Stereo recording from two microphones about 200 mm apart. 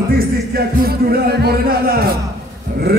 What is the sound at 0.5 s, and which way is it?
A man's voice, 50° right (ahead or behind).